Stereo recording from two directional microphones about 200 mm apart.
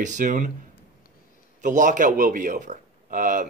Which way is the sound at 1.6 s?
40° right (ahead or behind).